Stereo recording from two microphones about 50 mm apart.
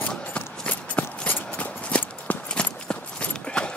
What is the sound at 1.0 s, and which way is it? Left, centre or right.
Clip-clop, left.